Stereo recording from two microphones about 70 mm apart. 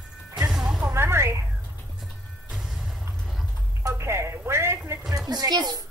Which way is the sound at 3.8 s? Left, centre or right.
Right.